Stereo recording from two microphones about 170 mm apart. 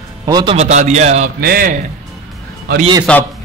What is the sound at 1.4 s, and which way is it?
Speech, 60° right (ahead or behind).